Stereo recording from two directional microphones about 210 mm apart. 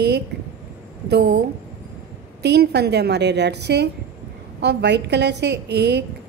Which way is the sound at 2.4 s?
50° right (ahead or behind).